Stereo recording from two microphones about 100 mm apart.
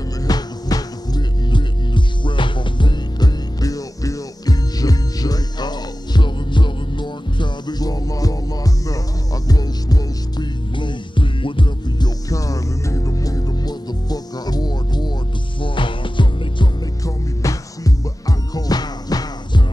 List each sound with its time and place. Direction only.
0.2 s music: 40° left (ahead or behind); by 12.1 s 55° left (ahead or behind)
12.3 s music: 35° left (ahead or behind)
15.6 s music: 55° left (ahead or behind)
17.0 s music: 35° left (ahead or behind)